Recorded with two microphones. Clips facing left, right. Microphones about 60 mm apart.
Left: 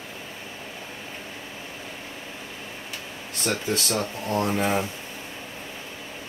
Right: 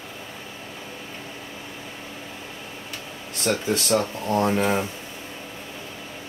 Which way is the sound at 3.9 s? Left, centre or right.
Right.